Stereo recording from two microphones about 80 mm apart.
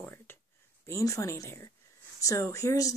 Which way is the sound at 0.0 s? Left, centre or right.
Left.